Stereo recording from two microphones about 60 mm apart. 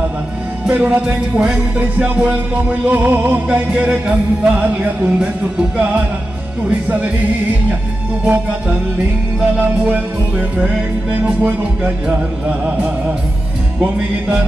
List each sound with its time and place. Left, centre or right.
0.7 s music: right
3.4 s music: centre
8.3 s music: right